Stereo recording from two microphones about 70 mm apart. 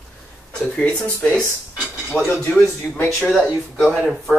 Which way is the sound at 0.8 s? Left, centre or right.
Left.